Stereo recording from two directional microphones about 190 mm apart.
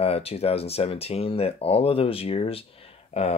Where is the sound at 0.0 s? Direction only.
30° left (ahead or behind).